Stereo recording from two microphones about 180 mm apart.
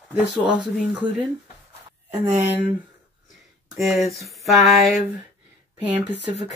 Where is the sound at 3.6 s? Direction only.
Centre (ahead or behind).